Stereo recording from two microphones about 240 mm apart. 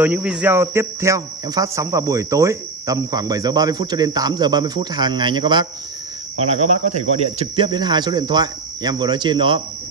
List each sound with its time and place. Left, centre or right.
0.0 s speech: centre